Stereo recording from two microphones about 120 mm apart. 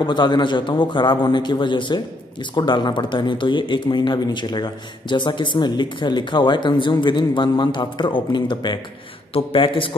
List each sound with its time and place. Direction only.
0.0 s a man's voice: 40° left (ahead or behind)